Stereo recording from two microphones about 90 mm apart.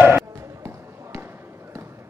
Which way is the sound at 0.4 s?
30° right (ahead or behind).